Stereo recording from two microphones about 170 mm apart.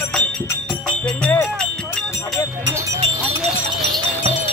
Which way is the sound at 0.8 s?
5° left (ahead or behind).